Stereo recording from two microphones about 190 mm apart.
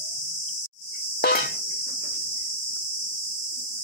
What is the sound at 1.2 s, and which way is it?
Cricket, 55° left (ahead or behind).